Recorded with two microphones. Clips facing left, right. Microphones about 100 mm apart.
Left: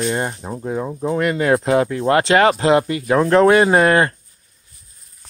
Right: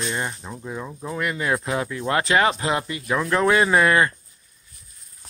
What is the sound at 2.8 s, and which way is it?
Speech, 55° left (ahead or behind).